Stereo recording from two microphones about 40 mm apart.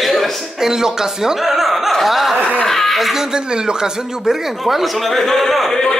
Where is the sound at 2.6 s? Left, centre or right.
Centre.